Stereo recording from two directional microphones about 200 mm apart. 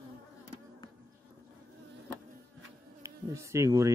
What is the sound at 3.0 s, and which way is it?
Speech, 15° right (ahead or behind).